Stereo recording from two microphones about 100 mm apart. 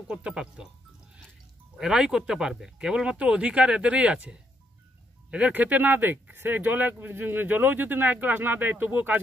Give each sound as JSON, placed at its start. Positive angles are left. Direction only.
{"t": 0.1, "sound": "speech", "side_deg": -10}
{"t": 1.8, "sound": "speech", "side_deg": -5}